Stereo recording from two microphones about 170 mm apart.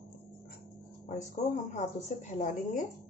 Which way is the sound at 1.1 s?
45° left (ahead or behind).